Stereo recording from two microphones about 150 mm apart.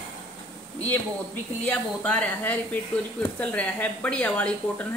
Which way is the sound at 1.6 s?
10° left (ahead or behind).